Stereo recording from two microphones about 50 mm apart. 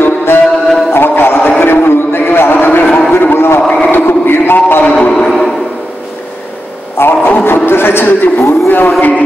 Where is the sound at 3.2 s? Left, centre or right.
Left.